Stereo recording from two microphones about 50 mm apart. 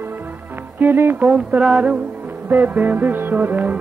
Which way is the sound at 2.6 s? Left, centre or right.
Right.